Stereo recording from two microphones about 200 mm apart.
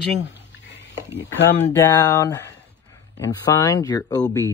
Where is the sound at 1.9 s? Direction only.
15° left (ahead or behind).